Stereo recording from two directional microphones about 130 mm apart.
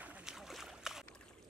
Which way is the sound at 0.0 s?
10° right (ahead or behind).